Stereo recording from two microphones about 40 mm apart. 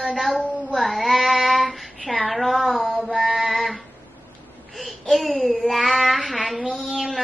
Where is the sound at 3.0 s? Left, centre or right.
Centre.